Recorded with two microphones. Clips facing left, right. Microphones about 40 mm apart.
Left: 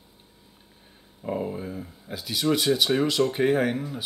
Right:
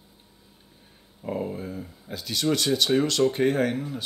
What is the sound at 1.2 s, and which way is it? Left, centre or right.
Speech, centre.